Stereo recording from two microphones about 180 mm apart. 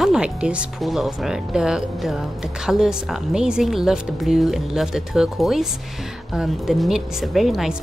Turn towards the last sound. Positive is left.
turn(degrees=0)  # may be behind; listen again after turning